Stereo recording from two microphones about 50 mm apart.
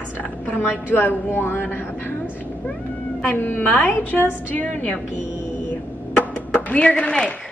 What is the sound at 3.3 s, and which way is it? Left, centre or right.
A woman's voice, left.